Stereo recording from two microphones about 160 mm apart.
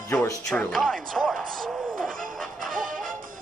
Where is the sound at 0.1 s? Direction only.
20° left (ahead or behind).